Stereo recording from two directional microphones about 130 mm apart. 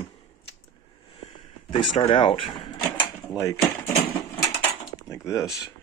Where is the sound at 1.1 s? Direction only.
45° left (ahead or behind).